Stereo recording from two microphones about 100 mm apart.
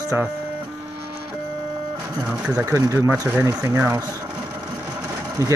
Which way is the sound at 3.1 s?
15° right (ahead or behind).